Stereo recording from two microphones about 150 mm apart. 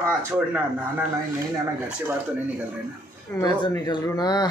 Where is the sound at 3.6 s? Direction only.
30° left (ahead or behind).